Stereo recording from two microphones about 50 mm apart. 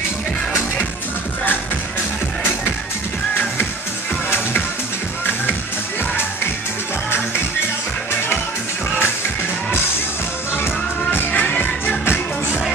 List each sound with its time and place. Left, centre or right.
10.6 s music: left
11.4 s music: left